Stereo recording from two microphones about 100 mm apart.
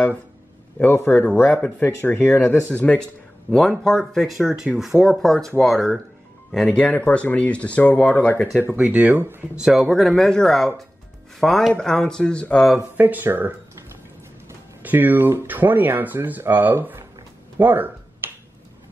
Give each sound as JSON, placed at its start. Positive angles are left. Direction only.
{"t": 0.7, "sound": "speech", "side_deg": 25}
{"t": 3.4, "sound": "speech", "side_deg": 0}
{"t": 8.5, "sound": "speech", "side_deg": -15}
{"t": 9.6, "sound": "speech", "side_deg": -5}
{"t": 12.9, "sound": "speech", "side_deg": -15}
{"t": 14.8, "sound": "speech", "side_deg": -20}
{"t": 17.6, "sound": "a sound", "side_deg": -20}